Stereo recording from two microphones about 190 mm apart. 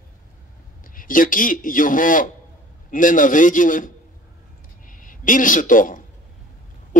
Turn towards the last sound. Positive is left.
turn(degrees=45)  # may be behind; listen again after turning